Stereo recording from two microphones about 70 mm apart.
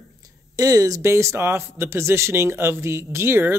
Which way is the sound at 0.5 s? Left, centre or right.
Right.